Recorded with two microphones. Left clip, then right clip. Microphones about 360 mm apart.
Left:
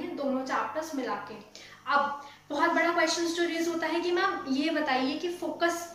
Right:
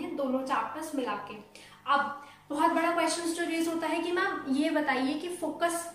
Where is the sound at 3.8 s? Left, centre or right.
Centre.